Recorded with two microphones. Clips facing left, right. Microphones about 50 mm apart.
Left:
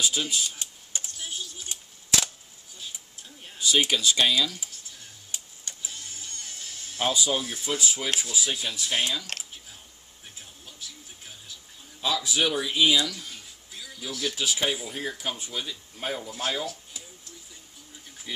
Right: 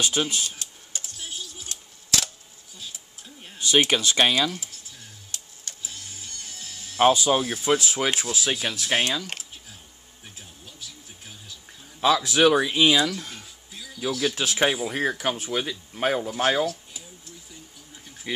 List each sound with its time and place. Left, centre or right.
0.0 s speech: right
0.9 s typing: centre
1.7 s a sound: centre
3.5 s speech: right
5.3 s a sound: centre
7.0 s speech: right
12.0 s a man's voice: right
14.0 s speech: right